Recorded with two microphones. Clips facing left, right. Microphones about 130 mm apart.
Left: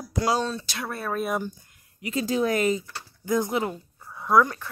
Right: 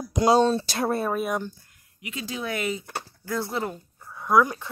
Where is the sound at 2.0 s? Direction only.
40° left (ahead or behind).